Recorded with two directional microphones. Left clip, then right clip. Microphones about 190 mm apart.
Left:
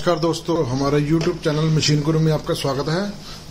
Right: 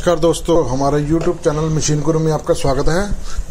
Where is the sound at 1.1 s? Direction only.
10° right (ahead or behind).